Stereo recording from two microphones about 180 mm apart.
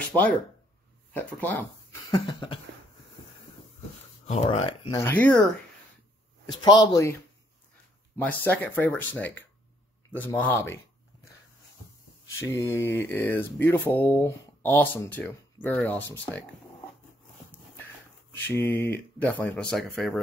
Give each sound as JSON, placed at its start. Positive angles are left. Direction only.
{"t": 0.1, "sound": "speech", "side_deg": -15}
{"t": 1.1, "sound": "speech", "side_deg": 10}
{"t": 2.1, "sound": "speech", "side_deg": 30}
{"t": 4.3, "sound": "speech", "side_deg": 35}
{"t": 5.0, "sound": "speech", "side_deg": 10}
{"t": 6.6, "sound": "speech", "side_deg": 20}
{"t": 8.2, "sound": "speech", "side_deg": 10}
{"t": 12.4, "sound": "speech", "side_deg": 15}
{"t": 18.3, "sound": "speech", "side_deg": 10}